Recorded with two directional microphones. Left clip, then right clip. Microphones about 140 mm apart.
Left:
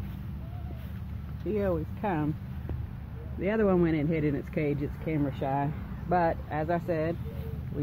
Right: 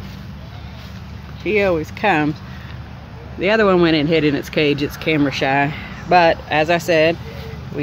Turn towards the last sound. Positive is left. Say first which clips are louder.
# right 15 dB
turn(degrees=-70)  # may be behind; listen again after turning